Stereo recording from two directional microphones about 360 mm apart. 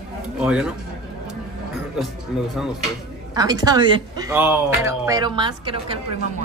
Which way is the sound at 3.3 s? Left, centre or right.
Centre.